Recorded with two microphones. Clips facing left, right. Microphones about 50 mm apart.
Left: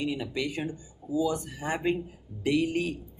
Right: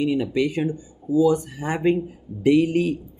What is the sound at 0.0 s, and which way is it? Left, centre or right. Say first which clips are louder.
Speech: right 9 dB; right.